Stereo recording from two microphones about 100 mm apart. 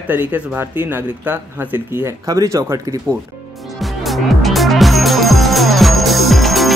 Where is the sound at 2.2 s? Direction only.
40° right (ahead or behind).